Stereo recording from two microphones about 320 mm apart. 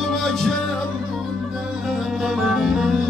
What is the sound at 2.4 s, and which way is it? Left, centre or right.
Music, centre.